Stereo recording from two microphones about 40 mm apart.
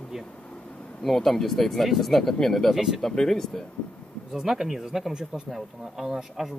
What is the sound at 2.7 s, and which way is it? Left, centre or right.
Speech, centre.